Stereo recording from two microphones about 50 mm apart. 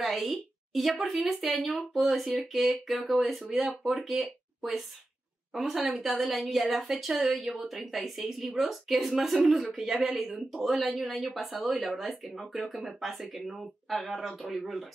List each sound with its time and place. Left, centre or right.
0.0 s a woman's voice: centre